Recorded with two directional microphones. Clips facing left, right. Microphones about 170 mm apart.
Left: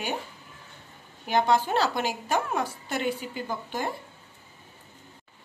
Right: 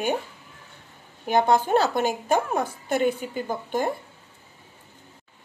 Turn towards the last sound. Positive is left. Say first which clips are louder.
# right 5 dB
turn(degrees=-50)  # may be behind; listen again after turning